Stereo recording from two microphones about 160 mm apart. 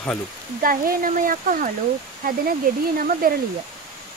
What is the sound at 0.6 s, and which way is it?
Speech, 65° right (ahead or behind).